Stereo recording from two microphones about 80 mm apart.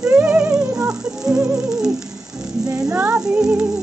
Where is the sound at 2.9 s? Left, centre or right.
Right.